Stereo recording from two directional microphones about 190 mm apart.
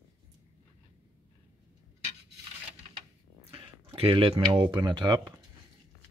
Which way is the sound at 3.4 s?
30° right (ahead or behind).